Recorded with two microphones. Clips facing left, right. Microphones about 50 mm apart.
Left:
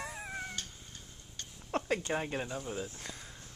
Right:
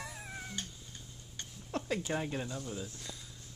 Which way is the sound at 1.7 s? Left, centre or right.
Left.